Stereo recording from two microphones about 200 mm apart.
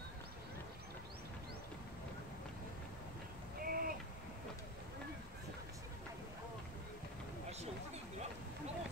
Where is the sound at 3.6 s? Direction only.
45° right (ahead or behind).